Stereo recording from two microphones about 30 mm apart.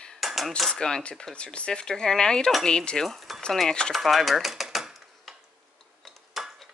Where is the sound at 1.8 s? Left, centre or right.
Left.